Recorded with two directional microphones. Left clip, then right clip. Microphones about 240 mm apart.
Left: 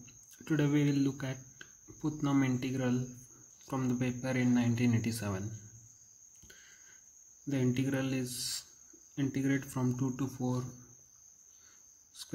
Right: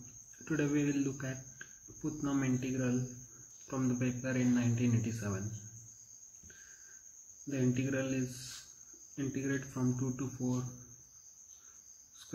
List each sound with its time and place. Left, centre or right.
0.5 s a man's voice: left
7.4 s a man's voice: left